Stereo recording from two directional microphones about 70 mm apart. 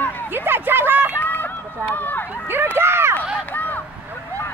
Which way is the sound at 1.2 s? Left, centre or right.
Left.